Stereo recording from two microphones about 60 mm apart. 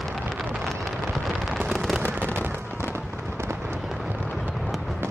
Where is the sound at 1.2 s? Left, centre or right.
Centre.